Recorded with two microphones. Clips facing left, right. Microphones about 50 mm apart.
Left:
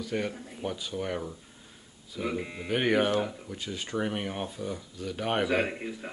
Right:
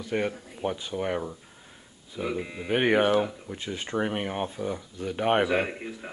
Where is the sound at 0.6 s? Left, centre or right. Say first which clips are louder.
Right 4 dB; right.